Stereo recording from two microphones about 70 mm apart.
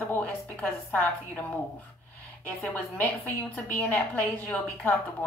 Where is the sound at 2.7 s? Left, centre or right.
Left.